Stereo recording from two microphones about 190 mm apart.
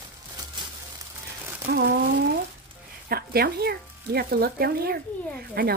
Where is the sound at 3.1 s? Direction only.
50° right (ahead or behind).